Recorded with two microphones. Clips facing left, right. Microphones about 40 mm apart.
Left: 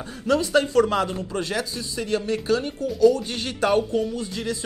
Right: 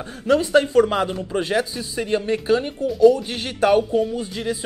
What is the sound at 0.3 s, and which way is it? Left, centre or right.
Speech, right.